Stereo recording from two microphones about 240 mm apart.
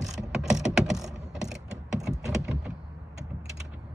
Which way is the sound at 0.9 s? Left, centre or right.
Centre.